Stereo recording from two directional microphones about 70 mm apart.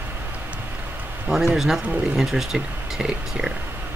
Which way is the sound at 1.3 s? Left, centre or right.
Centre.